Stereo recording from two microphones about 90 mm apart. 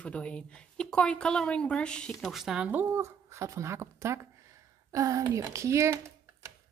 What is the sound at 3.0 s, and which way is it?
Speech, 35° right (ahead or behind).